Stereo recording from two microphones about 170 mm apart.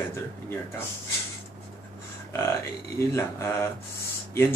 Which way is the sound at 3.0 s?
15° left (ahead or behind).